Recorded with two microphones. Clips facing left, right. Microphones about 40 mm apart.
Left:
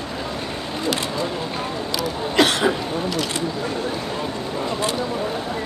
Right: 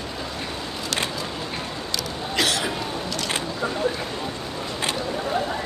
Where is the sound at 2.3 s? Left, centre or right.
Left.